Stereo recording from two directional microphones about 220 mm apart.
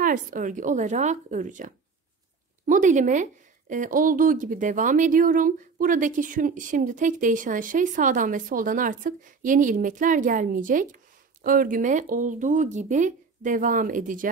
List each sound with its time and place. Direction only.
0.0 s speech: 35° right (ahead or behind)